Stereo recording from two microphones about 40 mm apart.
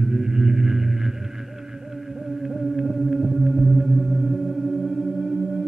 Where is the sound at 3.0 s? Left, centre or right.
Centre.